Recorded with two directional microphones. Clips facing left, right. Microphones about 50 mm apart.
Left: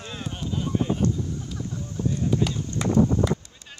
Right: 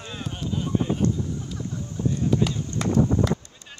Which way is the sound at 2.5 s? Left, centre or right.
Centre.